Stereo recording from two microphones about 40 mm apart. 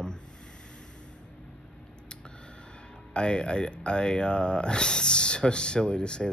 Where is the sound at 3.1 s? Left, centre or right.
Left.